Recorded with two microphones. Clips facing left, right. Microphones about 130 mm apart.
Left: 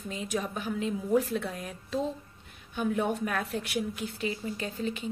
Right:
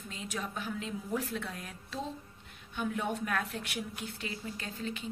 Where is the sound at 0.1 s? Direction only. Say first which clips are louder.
Left 6 dB; 10° left (ahead or behind).